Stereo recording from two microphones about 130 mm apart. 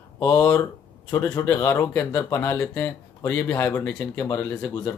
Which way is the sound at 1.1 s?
15° left (ahead or behind).